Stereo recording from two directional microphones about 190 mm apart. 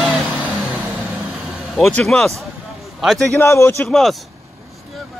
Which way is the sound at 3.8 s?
Centre (ahead or behind).